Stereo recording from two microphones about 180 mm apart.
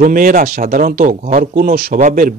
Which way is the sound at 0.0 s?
50° right (ahead or behind).